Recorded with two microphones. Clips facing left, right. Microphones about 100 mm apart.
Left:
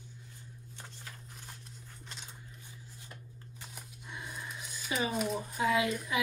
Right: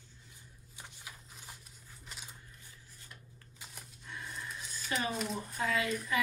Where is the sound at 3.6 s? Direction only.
10° left (ahead or behind).